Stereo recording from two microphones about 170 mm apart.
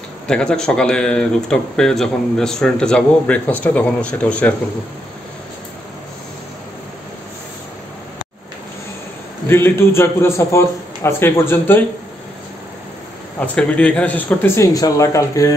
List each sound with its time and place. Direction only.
0.3 s speech: 5° left (ahead or behind)
9.5 s a man's voice: 15° left (ahead or behind)
13.6 s a man's voice: 10° left (ahead or behind)